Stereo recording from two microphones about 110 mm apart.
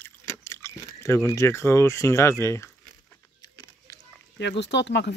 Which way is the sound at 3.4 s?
35° left (ahead or behind).